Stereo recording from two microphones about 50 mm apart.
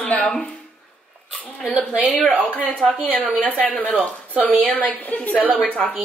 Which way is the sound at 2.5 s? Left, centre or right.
Left.